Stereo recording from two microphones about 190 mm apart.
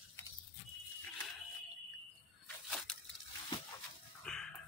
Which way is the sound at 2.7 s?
Centre (ahead or behind).